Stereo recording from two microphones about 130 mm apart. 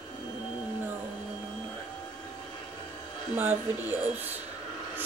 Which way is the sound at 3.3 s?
15° right (ahead or behind).